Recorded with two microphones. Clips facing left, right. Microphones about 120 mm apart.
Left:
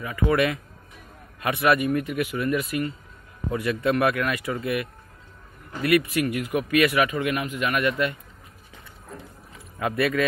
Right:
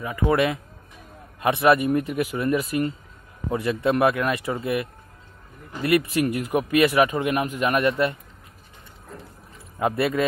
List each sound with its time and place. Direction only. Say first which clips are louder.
0.0 s speech: right 1 dB; 20° right (ahead or behind)
9.8 s speech: right 1 dB; 25° right (ahead or behind)